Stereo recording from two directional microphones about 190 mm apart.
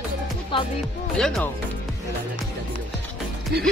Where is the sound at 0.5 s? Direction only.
25° left (ahead or behind).